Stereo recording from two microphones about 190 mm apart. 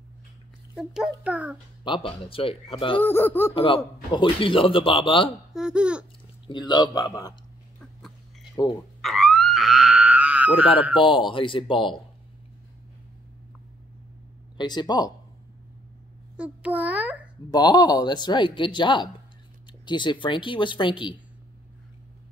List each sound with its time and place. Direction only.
0.7 s a child's voice: 5° right (ahead or behind)
1.9 s a man's voice: 30° left (ahead or behind)
3.0 s speech: 10° left (ahead or behind)
3.5 s a man's voice: 30° left (ahead or behind)
5.5 s speech: 5° right (ahead or behind)
6.4 s a man's voice: 25° left (ahead or behind)
7.8 s a sound: centre (ahead or behind)
9.0 s dog: centre (ahead or behind)
10.8 s a child's voice: 5° right (ahead or behind)
11.1 s a man's voice: 25° left (ahead or behind)
14.6 s a man's voice: 25° left (ahead or behind)
16.3 s a child's voice: 5° right (ahead or behind)
17.5 s a man's voice: 20° left (ahead or behind)